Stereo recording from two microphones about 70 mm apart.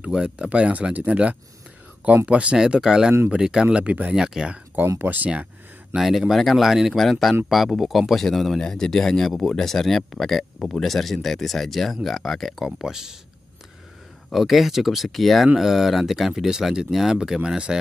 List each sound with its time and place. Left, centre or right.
0.0 s speech: centre
3.6 s speech: right
4.1 s speech: centre
4.8 s speech: right
5.9 s speech: centre
14.3 s speech: centre